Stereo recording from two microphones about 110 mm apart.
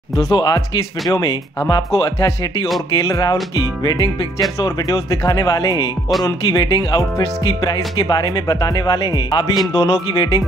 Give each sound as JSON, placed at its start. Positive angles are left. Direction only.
{"t": 0.3, "sound": "speech", "side_deg": 40}